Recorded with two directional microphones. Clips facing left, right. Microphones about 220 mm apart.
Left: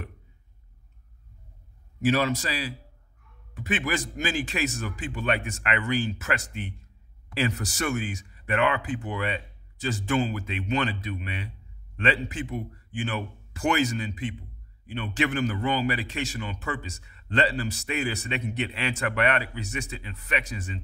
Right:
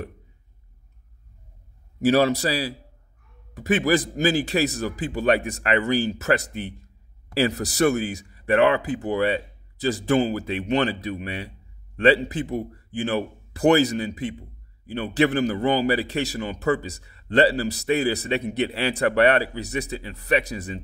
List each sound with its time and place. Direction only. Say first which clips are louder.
2.0 s a man's voice: right 5 dB; 35° right (ahead or behind)